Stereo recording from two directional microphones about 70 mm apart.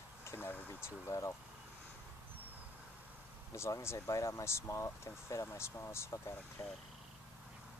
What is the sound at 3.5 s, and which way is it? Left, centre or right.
Speech, left.